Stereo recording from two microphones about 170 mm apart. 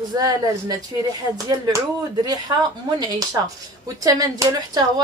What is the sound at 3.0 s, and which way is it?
A woman's voice, 20° right (ahead or behind).